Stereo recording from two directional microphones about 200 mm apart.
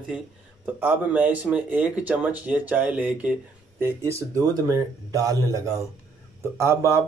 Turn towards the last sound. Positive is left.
turn(degrees=-15)  # may be behind; listen again after turning